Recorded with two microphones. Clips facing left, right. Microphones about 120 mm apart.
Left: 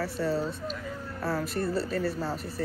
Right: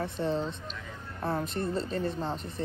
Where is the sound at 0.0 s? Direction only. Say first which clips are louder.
Left 1 dB; 20° right (ahead or behind).